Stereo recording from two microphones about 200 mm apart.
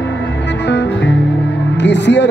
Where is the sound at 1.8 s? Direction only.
60° left (ahead or behind).